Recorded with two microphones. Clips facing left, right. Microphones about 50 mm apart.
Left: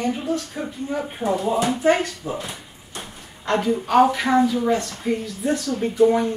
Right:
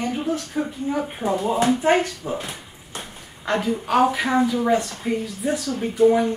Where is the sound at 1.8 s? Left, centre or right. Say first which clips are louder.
Even; right.